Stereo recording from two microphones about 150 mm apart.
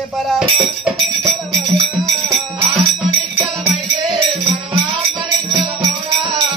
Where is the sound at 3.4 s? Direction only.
35° right (ahead or behind).